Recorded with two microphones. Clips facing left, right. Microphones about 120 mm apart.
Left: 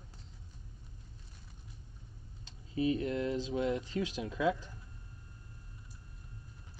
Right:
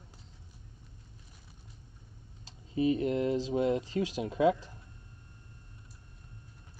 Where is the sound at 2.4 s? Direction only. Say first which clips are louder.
Right 3 dB; 30° right (ahead or behind).